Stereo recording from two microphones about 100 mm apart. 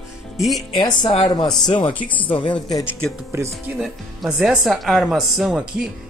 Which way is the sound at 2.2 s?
55° left (ahead or behind).